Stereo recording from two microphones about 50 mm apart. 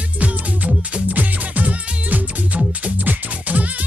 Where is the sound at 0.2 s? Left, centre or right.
Right.